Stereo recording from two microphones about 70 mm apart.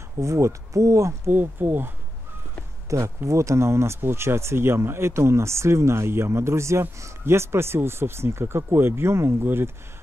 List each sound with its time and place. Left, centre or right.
0.2 s speech: right
1.3 s speech: right
3.2 s speech: right